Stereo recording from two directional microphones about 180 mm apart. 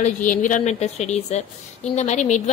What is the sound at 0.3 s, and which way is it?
A woman's voice, 45° left (ahead or behind).